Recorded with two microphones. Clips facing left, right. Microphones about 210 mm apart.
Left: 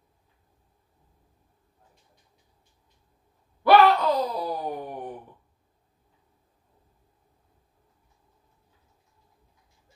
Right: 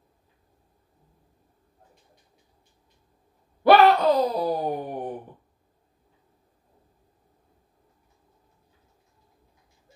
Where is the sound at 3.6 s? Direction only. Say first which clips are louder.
Right 2 dB; 30° right (ahead or behind).